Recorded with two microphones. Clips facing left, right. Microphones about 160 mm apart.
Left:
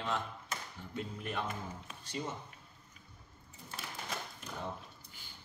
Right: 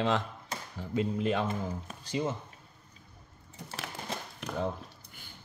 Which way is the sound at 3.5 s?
75° right (ahead or behind).